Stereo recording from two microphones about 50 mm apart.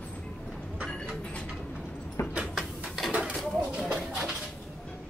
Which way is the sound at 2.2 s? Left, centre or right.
Left.